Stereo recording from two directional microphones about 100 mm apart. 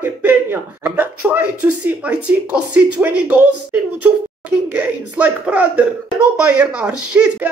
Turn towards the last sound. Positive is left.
turn(degrees=-20)  # may be behind; listen again after turning